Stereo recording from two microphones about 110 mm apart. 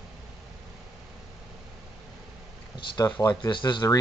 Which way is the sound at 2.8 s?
35° left (ahead or behind).